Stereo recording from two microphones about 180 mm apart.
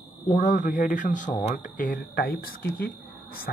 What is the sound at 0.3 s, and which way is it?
Speech, 45° left (ahead or behind).